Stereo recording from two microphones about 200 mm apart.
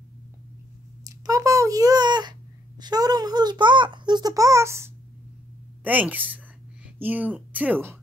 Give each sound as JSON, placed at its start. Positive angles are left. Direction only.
{"t": 1.0, "sound": "a child's voice", "side_deg": -15}